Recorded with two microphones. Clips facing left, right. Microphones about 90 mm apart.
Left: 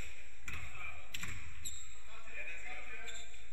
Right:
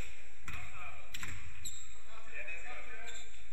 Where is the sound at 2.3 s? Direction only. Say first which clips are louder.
Right 2 dB; 60° right (ahead or behind).